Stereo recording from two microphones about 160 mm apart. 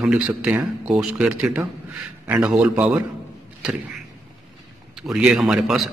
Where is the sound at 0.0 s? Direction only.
5° right (ahead or behind).